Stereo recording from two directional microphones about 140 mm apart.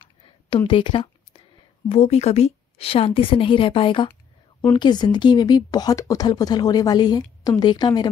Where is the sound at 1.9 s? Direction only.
50° left (ahead or behind).